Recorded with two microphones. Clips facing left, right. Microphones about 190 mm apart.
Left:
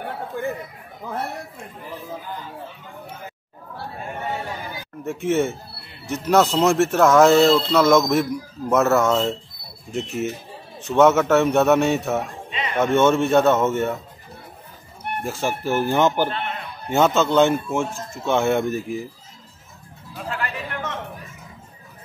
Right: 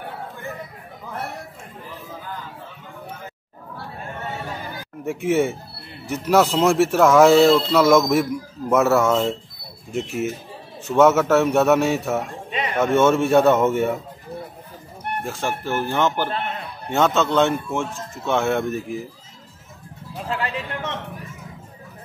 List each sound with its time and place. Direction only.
5.0 s a man's voice: 10° right (ahead or behind)
15.2 s a man's voice: 5° left (ahead or behind)
20.2 s speech: 25° right (ahead or behind)